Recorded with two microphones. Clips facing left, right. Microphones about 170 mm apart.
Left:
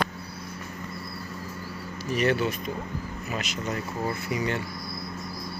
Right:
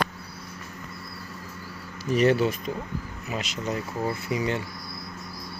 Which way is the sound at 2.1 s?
30° right (ahead or behind).